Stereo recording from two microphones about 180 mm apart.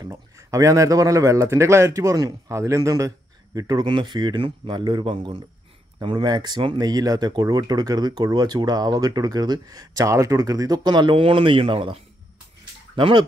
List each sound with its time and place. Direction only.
0.0 s a man's voice: 20° right (ahead or behind)